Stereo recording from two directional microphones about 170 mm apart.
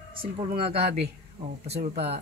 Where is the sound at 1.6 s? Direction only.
35° right (ahead or behind).